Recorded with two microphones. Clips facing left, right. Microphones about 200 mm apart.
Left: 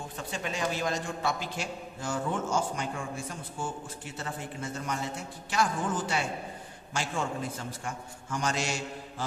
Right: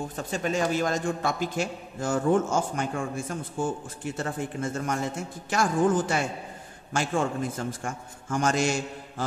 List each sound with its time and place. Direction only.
0.1 s a man's voice: 45° right (ahead or behind)